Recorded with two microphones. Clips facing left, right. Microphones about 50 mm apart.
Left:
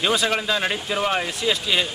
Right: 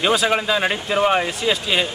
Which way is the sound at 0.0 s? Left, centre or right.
Centre.